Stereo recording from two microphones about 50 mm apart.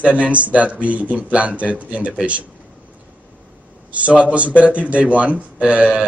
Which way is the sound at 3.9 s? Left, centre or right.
Right.